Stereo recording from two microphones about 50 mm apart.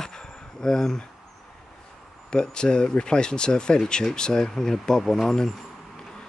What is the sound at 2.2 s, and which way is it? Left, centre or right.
Speech, centre.